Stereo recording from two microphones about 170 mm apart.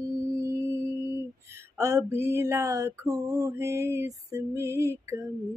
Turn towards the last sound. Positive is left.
turn(degrees=-20)  # may be behind; listen again after turning